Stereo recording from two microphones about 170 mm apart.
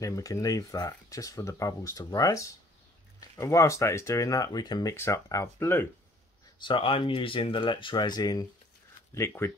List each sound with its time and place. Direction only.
0.0 s speech: 20° left (ahead or behind)
6.6 s speech: 30° left (ahead or behind); by 9.5 s 15° left (ahead or behind)